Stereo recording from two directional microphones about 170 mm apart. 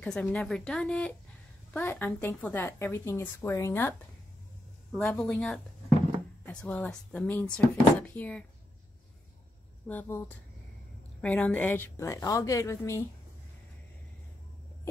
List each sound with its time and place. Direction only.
0.0 s speech: 5° left (ahead or behind)
4.9 s speech: 5° left (ahead or behind)
9.8 s speech: 10° left (ahead or behind)